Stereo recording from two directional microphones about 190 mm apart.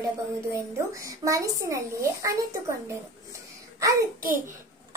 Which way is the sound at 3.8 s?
15° right (ahead or behind).